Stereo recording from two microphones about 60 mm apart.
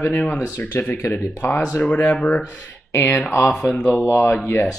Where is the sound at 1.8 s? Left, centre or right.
Left.